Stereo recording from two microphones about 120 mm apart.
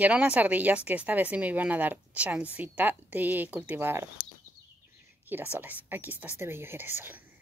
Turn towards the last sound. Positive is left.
turn(degrees=-15)  # may be behind; listen again after turning